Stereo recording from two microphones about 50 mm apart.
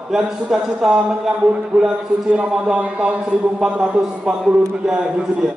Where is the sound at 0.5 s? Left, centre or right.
Right.